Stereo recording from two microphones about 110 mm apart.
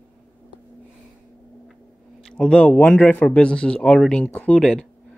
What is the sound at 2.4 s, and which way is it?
Speech, 10° left (ahead or behind).